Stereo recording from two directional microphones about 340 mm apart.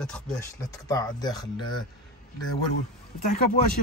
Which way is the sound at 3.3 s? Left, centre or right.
Left.